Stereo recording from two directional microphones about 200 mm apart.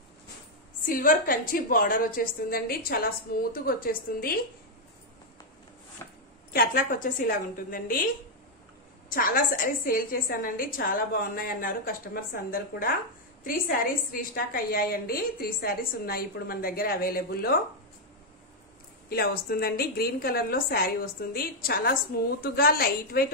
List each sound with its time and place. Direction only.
0.8 s a woman's voice: 45° left (ahead or behind)
6.0 s a sound: 15° left (ahead or behind)
6.5 s a woman's voice: 45° left (ahead or behind)
9.1 s a woman's voice: 45° left (ahead or behind)
19.0 s a woman's voice: 50° left (ahead or behind)